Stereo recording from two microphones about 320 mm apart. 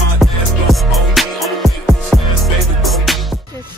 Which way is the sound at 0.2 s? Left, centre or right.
Centre.